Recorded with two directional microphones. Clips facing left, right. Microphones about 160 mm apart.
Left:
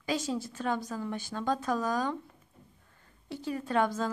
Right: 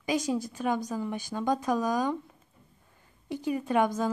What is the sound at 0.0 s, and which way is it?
A woman's voice, 15° right (ahead or behind).